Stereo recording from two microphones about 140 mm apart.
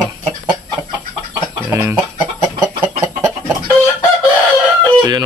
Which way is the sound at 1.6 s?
15° right (ahead or behind).